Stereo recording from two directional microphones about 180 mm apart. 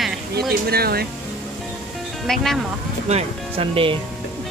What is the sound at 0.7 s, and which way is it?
Speech, 60° right (ahead or behind).